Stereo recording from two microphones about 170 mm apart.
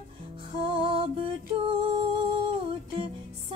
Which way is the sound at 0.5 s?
30° right (ahead or behind).